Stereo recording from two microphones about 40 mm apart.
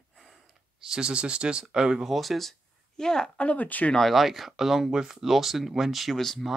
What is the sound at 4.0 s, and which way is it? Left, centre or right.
Speech, centre.